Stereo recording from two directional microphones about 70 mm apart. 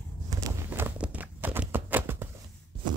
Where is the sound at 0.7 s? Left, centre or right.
Right.